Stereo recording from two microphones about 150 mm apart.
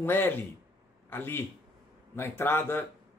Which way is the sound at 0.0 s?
15° left (ahead or behind).